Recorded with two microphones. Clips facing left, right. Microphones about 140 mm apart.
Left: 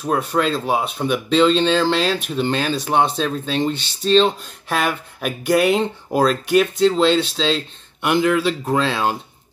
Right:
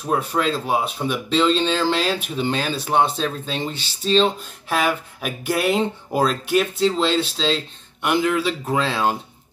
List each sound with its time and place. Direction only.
0.4 s speech: centre (ahead or behind)